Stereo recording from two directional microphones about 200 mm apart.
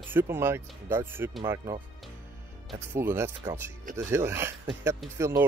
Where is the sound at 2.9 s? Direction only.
10° right (ahead or behind).